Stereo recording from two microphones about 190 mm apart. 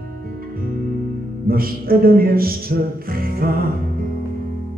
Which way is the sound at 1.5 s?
50° right (ahead or behind).